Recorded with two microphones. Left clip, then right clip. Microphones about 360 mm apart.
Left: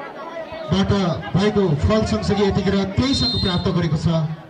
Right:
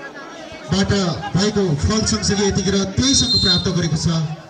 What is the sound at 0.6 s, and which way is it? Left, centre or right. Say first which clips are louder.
A man's voice: right 1 dB; centre.